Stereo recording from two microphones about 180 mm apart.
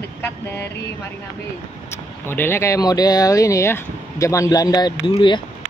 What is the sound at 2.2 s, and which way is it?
Speech, 10° left (ahead or behind).